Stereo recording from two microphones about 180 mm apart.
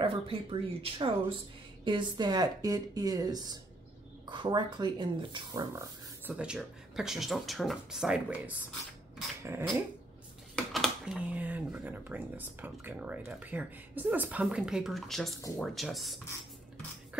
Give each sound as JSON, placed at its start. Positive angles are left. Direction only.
{"t": 0.0, "sound": "speech", "side_deg": -30}
{"t": 6.2, "sound": "speech", "side_deg": -5}
{"t": 9.4, "sound": "dog", "side_deg": -15}
{"t": 10.5, "sound": "speech", "side_deg": 0}